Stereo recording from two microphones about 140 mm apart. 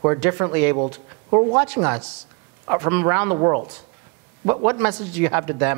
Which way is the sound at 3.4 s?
25° right (ahead or behind).